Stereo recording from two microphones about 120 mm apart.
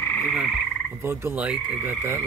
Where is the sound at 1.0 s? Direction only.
20° right (ahead or behind).